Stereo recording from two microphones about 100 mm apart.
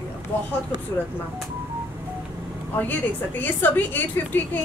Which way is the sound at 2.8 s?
15° left (ahead or behind).